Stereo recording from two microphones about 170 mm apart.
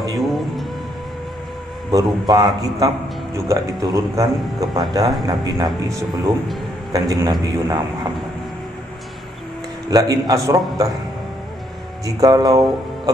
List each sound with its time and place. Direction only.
0.2 s music: centre (ahead or behind)
1.9 s a man's voice: 20° right (ahead or behind)
9.8 s a man's voice: 20° right (ahead or behind)
12.2 s a man's voice: 25° right (ahead or behind)